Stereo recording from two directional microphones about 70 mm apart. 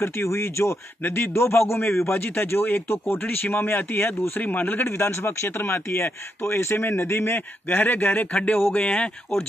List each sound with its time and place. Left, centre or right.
0.0 s speech: left; by 9.1 s centre